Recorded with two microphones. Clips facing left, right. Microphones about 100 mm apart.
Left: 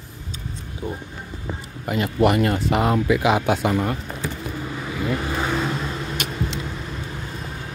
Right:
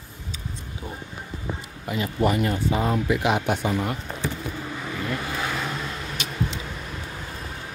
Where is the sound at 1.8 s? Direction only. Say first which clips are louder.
Left 4 dB; 65° left (ahead or behind); by 2.9 s 85° left.